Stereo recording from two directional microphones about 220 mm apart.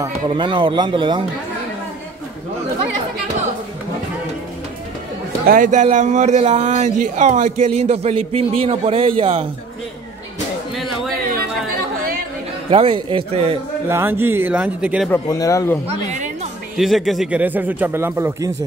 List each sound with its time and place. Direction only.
0.0 s a man's voice: 20° right (ahead or behind)
5.5 s a man's voice: 35° right (ahead or behind)
12.6 s a man's voice: 25° right (ahead or behind)
13.8 s speech: 10° right (ahead or behind)
15.0 s speech: 15° left (ahead or behind)
16.7 s speech: centre (ahead or behind)